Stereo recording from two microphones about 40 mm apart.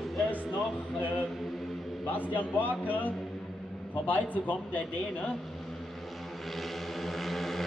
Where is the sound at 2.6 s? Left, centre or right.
Left.